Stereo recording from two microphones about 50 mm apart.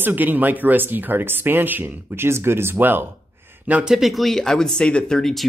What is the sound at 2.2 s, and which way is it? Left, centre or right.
Speech, right.